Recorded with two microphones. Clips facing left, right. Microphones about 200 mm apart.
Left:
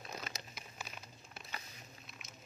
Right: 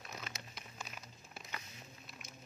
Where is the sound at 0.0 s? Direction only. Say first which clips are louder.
Left 2 dB; 40° left (ahead or behind).